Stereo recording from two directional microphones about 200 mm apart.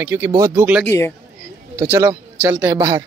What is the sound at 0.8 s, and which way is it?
Speech, 15° left (ahead or behind).